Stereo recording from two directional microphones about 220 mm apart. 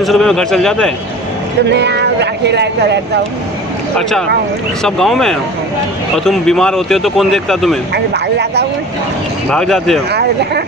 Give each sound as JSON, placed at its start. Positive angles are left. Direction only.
{"t": 0.0, "sound": "speech", "side_deg": 0}
{"t": 1.7, "sound": "speech", "side_deg": -50}
{"t": 4.8, "sound": "speech", "side_deg": 0}
{"t": 7.9, "sound": "speech", "side_deg": -50}
{"t": 9.5, "sound": "speech", "side_deg": 0}